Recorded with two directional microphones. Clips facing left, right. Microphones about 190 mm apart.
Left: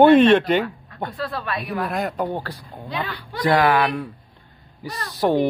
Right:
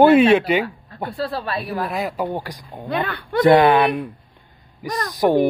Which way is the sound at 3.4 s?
25° right (ahead or behind).